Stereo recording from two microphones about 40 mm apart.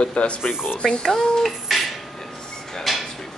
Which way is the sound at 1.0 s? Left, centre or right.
Centre.